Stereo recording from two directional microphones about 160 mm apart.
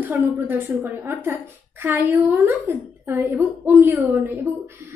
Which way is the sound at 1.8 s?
10° right (ahead or behind).